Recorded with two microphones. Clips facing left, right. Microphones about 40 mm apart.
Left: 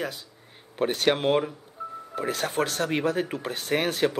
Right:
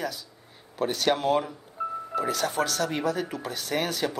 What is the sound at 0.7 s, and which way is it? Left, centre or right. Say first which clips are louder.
Speech: left 2 dB; left.